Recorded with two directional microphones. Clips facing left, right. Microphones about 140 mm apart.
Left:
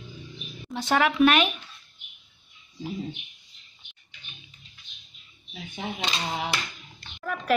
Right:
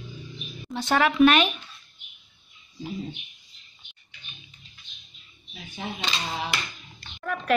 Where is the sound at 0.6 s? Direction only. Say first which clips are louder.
Right 1 dB; 5° left (ahead or behind).